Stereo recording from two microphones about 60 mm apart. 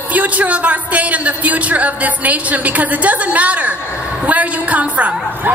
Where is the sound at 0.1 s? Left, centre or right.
Right.